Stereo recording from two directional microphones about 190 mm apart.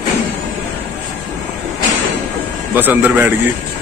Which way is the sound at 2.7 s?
10° right (ahead or behind).